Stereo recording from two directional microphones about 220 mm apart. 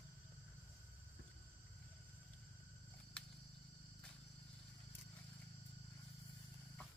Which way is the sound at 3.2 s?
5° left (ahead or behind).